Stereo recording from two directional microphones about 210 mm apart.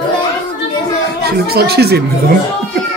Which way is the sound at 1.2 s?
50° right (ahead or behind).